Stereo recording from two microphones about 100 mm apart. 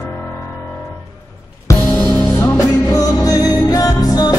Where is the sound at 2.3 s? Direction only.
30° left (ahead or behind).